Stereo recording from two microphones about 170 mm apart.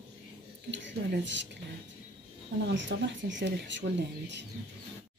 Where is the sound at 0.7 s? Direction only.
90° right.